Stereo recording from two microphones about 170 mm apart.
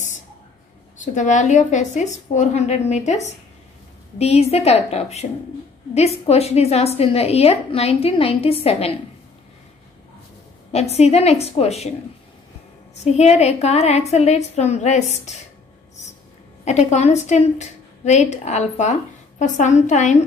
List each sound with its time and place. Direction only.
1.0 s a woman's voice: 45° left (ahead or behind)
4.2 s a woman's voice: 35° left (ahead or behind)
10.7 s a woman's voice: 40° left (ahead or behind)
13.0 s a woman's voice: 40° left (ahead or behind)
16.6 s a woman's voice: 40° left (ahead or behind)